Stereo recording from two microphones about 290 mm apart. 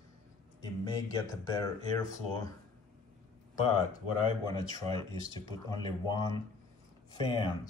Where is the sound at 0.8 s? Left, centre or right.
Centre.